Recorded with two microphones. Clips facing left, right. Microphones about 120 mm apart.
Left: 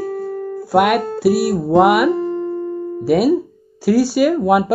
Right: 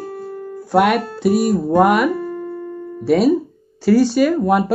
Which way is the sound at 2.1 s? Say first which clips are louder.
Left 5 dB; 30° left (ahead or behind).